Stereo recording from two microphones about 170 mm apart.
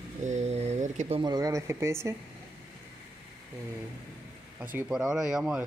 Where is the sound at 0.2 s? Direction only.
45° right (ahead or behind).